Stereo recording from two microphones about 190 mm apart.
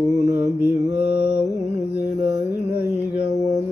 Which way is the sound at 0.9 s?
60° left (ahead or behind).